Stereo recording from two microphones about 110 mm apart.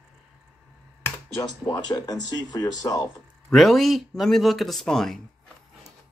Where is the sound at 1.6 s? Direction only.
35° left (ahead or behind).